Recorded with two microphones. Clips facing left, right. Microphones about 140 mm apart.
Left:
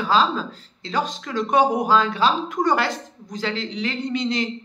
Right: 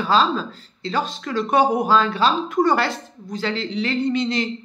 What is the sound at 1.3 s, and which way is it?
A woman's voice, 15° left (ahead or behind).